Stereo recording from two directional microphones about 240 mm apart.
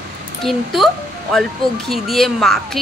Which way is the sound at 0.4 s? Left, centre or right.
Centre.